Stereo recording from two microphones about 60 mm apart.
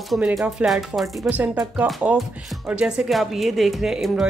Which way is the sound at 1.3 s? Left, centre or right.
Right.